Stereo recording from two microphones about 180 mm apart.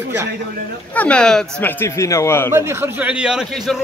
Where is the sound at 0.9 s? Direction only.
5° left (ahead or behind).